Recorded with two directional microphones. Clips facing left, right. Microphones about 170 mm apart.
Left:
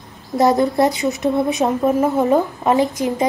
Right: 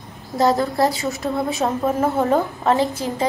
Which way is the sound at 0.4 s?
20° left (ahead or behind).